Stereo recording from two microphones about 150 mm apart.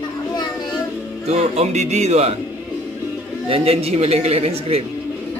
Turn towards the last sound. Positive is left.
turn(degrees=-45)  # may be behind; listen again after turning